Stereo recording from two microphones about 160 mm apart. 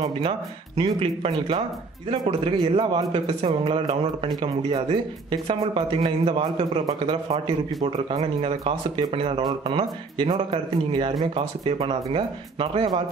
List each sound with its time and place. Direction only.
0.0 s a man's voice: 35° right (ahead or behind)